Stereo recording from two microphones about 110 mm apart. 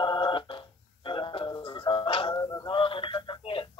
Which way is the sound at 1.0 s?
50° left (ahead or behind).